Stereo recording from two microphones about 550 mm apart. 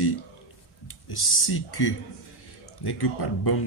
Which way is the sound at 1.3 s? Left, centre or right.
Left.